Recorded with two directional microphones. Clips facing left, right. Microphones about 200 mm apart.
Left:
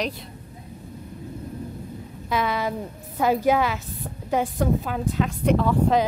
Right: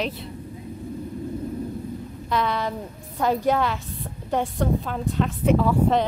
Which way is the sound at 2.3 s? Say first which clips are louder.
Even; 5° left (ahead or behind).